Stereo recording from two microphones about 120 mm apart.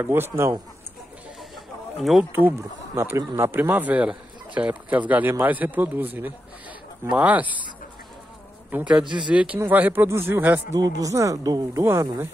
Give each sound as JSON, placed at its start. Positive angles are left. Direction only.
{"t": 0.0, "sound": "speech", "side_deg": -20}
{"t": 2.0, "sound": "speech", "side_deg": 0}
{"t": 3.0, "sound": "speech", "side_deg": -20}
{"t": 8.7, "sound": "speech", "side_deg": -10}